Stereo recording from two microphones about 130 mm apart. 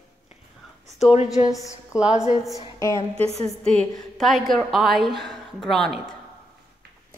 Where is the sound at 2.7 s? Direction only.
25° left (ahead or behind).